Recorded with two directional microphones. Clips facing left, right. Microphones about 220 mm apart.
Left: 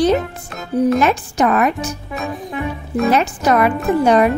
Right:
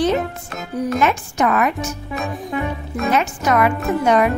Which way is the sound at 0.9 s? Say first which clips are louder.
Left 3 dB; 35° left (ahead or behind).